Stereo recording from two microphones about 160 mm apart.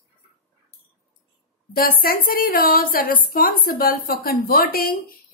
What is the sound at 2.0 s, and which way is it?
A woman's voice, 65° left (ahead or behind).